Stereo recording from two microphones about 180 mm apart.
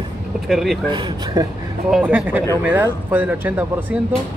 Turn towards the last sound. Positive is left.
turn(degrees=-10)  # may be behind; listen again after turning